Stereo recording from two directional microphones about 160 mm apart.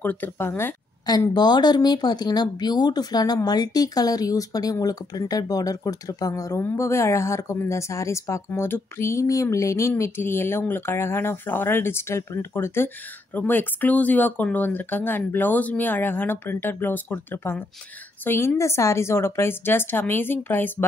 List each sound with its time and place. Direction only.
0.0 s speech: 10° left (ahead or behind)
1.0 s speech: 25° left (ahead or behind)